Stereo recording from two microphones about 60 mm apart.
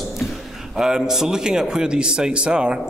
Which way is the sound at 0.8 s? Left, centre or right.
Centre.